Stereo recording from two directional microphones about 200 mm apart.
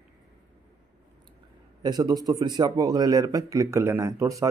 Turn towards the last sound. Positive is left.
turn(degrees=-15)  # may be behind; listen again after turning